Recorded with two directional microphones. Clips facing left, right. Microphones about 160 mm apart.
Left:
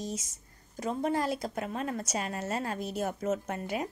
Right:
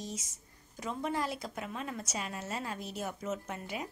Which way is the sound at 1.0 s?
40° left (ahead or behind).